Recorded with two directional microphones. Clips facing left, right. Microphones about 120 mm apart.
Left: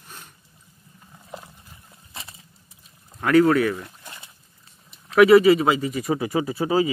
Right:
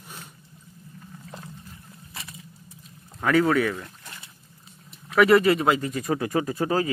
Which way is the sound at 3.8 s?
20° left (ahead or behind).